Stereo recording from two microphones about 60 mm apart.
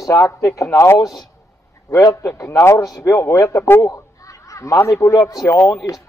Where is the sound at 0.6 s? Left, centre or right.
Left.